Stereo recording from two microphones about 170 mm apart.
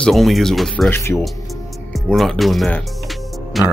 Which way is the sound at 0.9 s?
15° left (ahead or behind).